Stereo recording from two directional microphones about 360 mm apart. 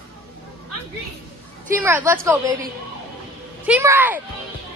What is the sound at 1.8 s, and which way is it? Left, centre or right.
Speech, centre.